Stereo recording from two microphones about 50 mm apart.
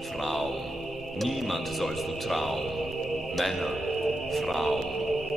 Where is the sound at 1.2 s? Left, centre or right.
Centre.